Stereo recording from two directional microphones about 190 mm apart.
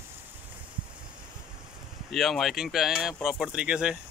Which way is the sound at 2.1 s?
Centre (ahead or behind).